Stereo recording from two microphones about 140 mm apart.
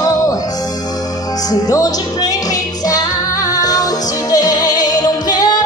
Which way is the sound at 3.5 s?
25° left (ahead or behind).